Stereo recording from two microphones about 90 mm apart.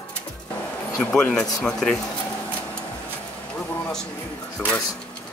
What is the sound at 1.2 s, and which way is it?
Speech, 10° left (ahead or behind).